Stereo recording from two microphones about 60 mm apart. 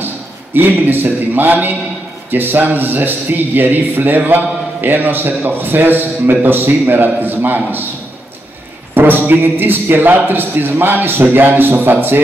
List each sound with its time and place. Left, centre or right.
0.6 s a man's voice: right
8.9 s a man's voice: right